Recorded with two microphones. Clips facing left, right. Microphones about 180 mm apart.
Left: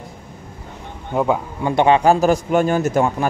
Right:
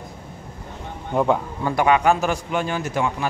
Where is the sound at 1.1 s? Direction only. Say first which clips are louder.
Left 1 dB; 5° left (ahead or behind).